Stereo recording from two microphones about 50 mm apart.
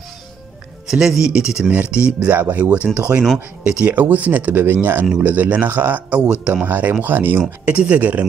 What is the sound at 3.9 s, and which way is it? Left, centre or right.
A man's voice, right.